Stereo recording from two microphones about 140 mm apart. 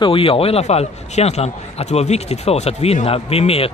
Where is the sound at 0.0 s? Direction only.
40° left (ahead or behind).